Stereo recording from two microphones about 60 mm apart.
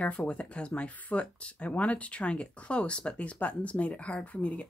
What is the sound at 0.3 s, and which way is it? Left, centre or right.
A woman's voice, left.